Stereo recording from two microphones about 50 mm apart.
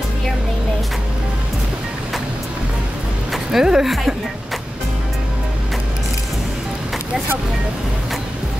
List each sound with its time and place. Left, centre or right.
3.5 s a woman's voice: centre